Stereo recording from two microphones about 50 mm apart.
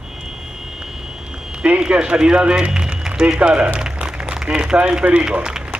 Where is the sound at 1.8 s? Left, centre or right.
Centre.